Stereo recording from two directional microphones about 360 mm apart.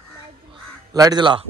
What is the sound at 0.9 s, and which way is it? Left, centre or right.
Speech, centre.